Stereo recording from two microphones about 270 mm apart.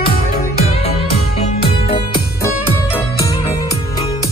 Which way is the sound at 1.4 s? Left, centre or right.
Left.